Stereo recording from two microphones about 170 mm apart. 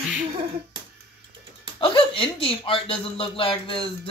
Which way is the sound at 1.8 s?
30° left (ahead or behind).